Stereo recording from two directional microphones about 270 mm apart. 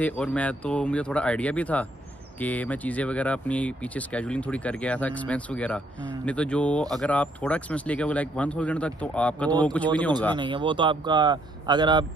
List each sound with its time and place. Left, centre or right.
0.0 s speech: centre
10.3 s speech: centre